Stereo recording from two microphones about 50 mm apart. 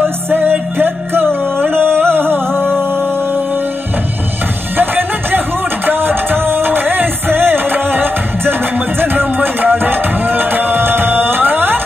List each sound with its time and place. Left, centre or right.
0.0 s music: right
4.7 s music: right